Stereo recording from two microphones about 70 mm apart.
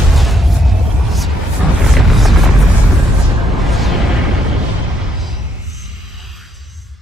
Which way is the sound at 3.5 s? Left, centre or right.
Centre.